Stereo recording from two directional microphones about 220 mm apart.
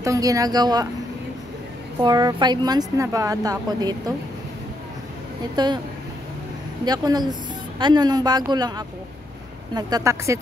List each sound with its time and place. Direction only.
0.0 s speech: 15° right (ahead or behind)
2.0 s speech: 20° right (ahead or behind)
5.6 s speech: 20° right (ahead or behind)
6.8 s speech: 20° right (ahead or behind)